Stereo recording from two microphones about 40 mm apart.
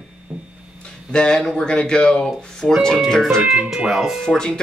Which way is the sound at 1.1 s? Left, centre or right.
Centre.